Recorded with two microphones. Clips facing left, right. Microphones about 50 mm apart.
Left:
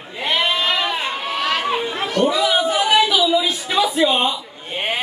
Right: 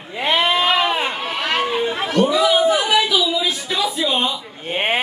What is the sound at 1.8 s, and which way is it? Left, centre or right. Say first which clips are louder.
Chatter: right 2 dB; centre.